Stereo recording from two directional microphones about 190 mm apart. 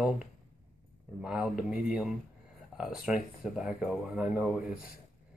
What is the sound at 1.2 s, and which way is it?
Speech, 5° right (ahead or behind).